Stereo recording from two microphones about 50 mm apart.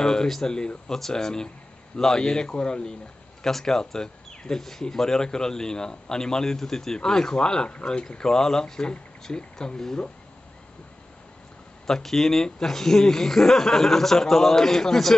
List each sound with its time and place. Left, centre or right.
0.0 s speech: centre
11.8 s speech: centre